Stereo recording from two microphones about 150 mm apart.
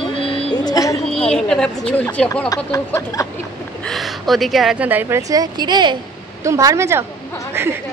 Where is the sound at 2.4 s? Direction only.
20° left (ahead or behind).